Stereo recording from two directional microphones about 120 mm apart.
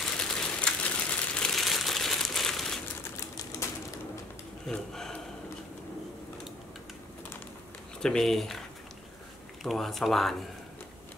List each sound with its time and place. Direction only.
0.2 s crumpling: 5° left (ahead or behind)
3.6 s bird: 25° left (ahead or behind)
4.6 s a sound: 5° left (ahead or behind)
8.0 s speech: 5° left (ahead or behind)
9.6 s speech: centre (ahead or behind)